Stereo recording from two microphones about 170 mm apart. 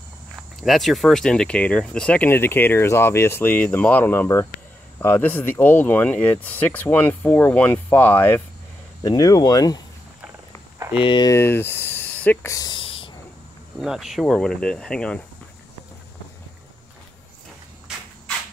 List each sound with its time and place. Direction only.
0.6 s speech: centre (ahead or behind); by 9.8 s 25° left (ahead or behind)
10.8 s a sound: 10° right (ahead or behind)
11.1 s speech: 25° left (ahead or behind)
13.7 s speech: centre (ahead or behind)